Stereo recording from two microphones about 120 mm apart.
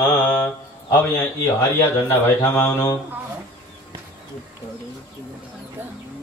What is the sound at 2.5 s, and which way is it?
Speech, 20° left (ahead or behind).